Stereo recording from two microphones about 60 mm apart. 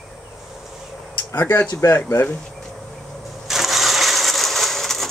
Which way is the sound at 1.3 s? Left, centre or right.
Left.